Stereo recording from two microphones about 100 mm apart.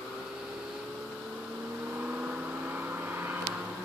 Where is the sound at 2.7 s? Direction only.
20° right (ahead or behind).